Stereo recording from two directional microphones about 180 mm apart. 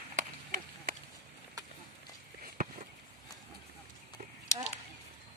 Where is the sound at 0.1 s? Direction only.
50° right (ahead or behind).